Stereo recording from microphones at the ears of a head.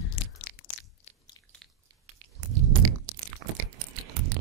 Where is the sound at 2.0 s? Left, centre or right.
Right.